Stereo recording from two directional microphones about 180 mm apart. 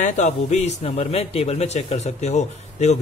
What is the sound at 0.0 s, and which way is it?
Speech, 40° left (ahead or behind).